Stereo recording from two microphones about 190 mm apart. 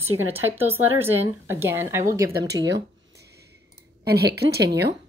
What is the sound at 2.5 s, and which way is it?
Speech, 65° right (ahead or behind).